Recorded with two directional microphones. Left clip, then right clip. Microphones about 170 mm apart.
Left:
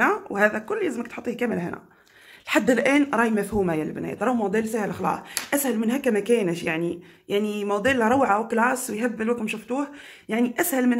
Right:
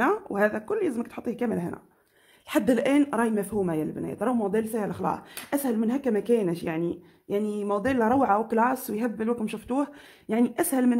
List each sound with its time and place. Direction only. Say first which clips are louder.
0.0 s speech: left 3 dB; 30° right (ahead or behind)